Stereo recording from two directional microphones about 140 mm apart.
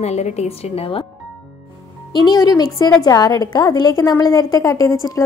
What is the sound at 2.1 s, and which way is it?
A woman's voice, 30° left (ahead or behind).